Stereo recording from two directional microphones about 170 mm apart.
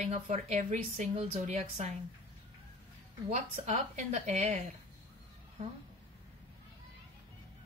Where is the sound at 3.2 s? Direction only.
40° right (ahead or behind).